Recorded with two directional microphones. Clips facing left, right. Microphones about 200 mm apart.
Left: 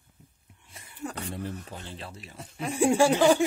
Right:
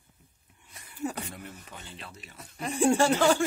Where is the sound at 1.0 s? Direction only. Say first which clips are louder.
Right 3 dB; 10° right (ahead or behind).